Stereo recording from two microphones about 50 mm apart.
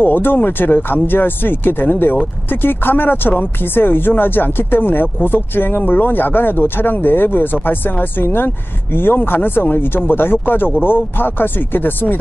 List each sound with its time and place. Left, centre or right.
0.0 s speech: left